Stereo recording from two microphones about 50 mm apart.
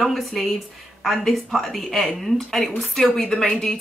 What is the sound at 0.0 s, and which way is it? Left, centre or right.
A woman's voice, centre.